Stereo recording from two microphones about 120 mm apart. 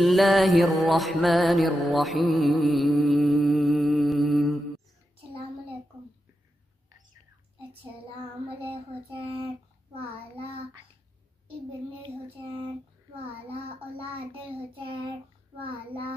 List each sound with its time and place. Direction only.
0.0 s music: centre (ahead or behind)
5.1 s child singing: 50° right (ahead or behind)
8.5 s child singing: 50° right (ahead or behind)
14.7 s child singing: 50° right (ahead or behind)